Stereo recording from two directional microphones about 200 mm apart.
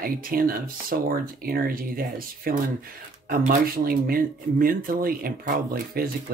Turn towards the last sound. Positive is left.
turn(degrees=-45)  # may be behind; listen again after turning